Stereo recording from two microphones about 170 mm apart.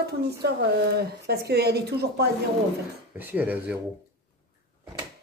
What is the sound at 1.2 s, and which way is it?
A woman's voice, 70° right (ahead or behind).